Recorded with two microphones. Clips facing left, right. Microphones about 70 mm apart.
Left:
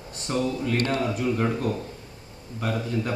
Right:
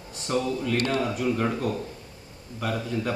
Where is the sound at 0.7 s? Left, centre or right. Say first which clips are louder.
Right 1 dB; left.